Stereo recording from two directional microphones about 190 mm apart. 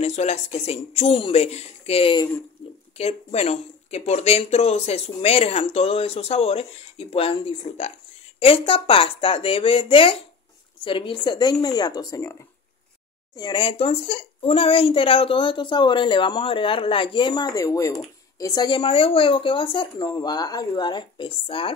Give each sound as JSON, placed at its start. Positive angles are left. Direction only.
{"t": 0.0, "sound": "speech", "side_deg": 35}
{"t": 2.6, "sound": "a sound", "side_deg": 30}
{"t": 3.0, "sound": "speech", "side_deg": 35}
{"t": 13.4, "sound": "speech", "side_deg": 25}